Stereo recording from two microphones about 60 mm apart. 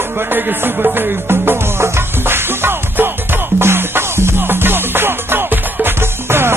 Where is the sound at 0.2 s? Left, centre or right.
Right.